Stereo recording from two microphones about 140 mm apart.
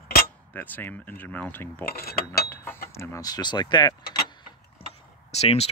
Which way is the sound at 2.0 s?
90° left.